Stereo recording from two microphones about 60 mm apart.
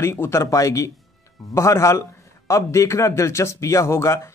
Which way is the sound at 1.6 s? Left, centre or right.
Left.